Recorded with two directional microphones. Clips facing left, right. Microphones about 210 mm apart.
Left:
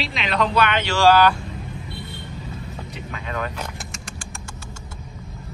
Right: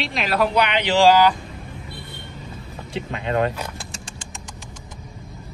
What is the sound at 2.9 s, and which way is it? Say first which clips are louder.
Speech: right 9 dB; 30° right (ahead or behind).